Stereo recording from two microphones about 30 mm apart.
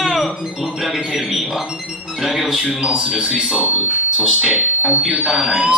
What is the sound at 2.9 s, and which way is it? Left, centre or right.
Speech, right.